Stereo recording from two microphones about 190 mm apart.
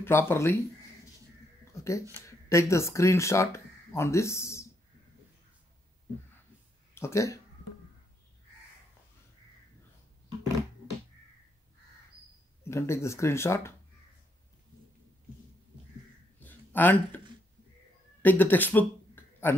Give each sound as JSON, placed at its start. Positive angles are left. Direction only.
{"t": 0.0, "sound": "speech", "side_deg": 10}
{"t": 1.8, "sound": "speech", "side_deg": 15}
{"t": 7.0, "sound": "speech", "side_deg": 15}
{"t": 12.6, "sound": "speech", "side_deg": 15}
{"t": 16.3, "sound": "a sound", "side_deg": 10}
{"t": 18.2, "sound": "a sound", "side_deg": 10}